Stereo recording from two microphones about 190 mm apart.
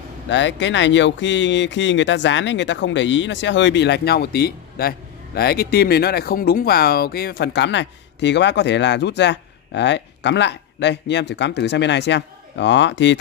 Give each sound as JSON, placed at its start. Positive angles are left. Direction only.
{"t": 0.3, "sound": "speech", "side_deg": 70}